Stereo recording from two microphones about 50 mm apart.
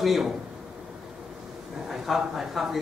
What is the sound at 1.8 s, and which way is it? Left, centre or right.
Speech, centre.